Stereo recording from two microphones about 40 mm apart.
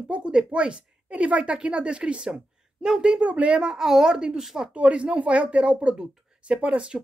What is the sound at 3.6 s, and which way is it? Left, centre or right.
Speech, centre.